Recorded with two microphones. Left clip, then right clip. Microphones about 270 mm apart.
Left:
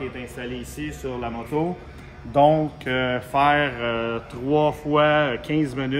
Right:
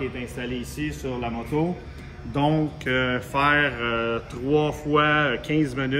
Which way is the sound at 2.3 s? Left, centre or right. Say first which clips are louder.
Left 7 dB; left.